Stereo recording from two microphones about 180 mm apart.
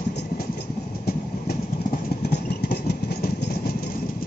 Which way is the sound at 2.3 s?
65° left (ahead or behind).